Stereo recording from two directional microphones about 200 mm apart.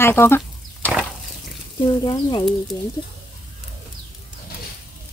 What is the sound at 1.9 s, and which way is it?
Speech, 20° left (ahead or behind).